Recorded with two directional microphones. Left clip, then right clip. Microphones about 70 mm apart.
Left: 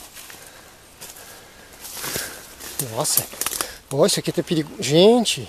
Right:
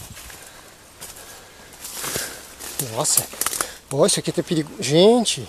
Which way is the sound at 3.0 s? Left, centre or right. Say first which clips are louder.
Right 1 dB; centre.